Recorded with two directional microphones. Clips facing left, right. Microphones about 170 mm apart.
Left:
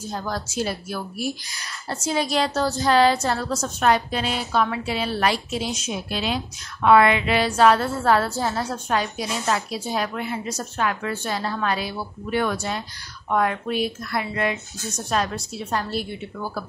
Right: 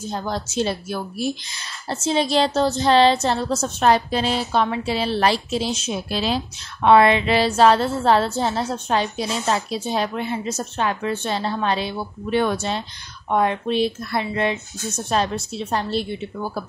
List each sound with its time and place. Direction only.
0.0 s a woman's voice: 25° right (ahead or behind)